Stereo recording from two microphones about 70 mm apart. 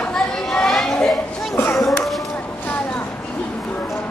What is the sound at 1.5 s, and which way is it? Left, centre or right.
Children playing, left.